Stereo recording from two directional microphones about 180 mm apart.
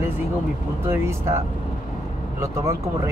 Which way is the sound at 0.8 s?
15° right (ahead or behind).